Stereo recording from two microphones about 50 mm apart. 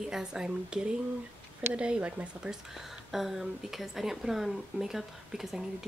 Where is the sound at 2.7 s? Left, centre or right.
Centre.